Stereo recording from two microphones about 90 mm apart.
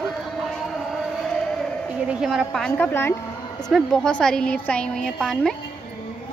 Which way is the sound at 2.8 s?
25° left (ahead or behind).